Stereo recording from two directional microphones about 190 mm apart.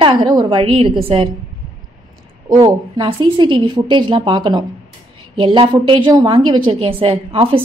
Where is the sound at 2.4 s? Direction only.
20° right (ahead or behind).